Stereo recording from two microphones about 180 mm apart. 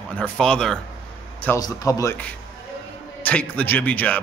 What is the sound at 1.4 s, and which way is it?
Speech, 20° left (ahead or behind).